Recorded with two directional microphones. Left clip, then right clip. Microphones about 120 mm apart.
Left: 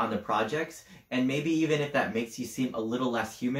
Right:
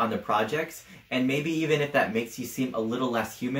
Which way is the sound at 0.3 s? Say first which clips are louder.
Right 3 dB; 25° right (ahead or behind).